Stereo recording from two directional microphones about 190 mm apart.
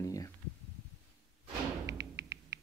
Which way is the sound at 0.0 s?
20° left (ahead or behind).